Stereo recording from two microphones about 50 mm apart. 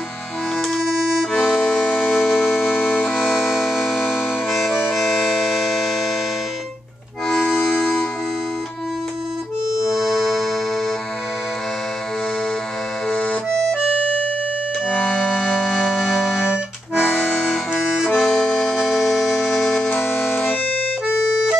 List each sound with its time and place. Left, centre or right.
1.3 s accordion: centre
1.6 s accordion: centre
2.1 s music: centre
5.0 s civil defense siren: centre
7.4 s music: centre
9.9 s music: centre
13.1 s accordion: left
15.0 s music: centre
17.0 s accordion: left
18.1 s accordion: centre
18.8 s music: centre